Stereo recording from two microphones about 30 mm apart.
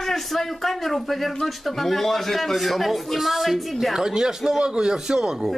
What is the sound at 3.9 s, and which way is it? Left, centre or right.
A man's voice, centre.